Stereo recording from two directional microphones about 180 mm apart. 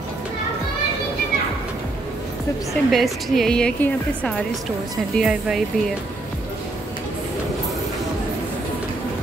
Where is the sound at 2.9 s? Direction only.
Centre (ahead or behind).